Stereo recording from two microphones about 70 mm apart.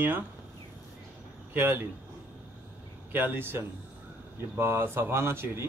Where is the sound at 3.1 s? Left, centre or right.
Right.